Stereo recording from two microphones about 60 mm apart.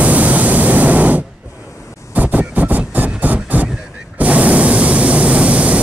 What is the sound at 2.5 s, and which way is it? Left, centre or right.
Train, right.